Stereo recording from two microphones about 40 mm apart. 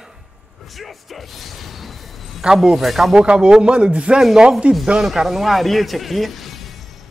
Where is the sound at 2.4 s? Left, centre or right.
Centre.